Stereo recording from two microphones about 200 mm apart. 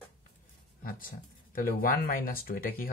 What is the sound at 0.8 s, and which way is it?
Speech, 45° left (ahead or behind).